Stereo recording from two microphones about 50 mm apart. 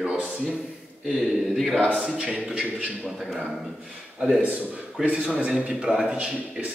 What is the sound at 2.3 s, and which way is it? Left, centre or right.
Speech, right.